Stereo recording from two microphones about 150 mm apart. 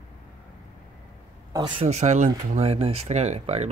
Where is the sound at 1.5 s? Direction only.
30° right (ahead or behind).